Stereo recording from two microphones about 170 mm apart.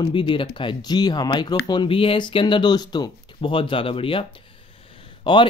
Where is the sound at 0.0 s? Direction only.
30° left (ahead or behind).